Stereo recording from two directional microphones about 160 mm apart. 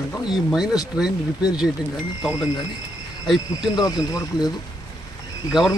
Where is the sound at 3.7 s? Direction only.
20° left (ahead or behind).